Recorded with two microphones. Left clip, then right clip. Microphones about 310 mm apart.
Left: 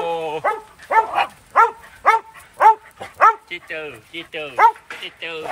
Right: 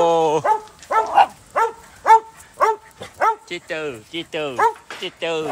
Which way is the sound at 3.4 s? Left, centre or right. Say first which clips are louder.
Right 3 dB; centre.